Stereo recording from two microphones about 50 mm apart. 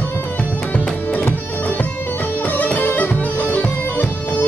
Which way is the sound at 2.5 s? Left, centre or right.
Left.